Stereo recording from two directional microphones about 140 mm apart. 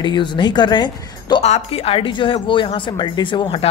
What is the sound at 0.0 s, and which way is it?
Speech, 35° left (ahead or behind).